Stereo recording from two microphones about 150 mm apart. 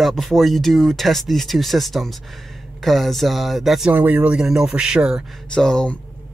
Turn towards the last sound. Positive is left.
turn(degrees=5)  # may be behind; listen again after turning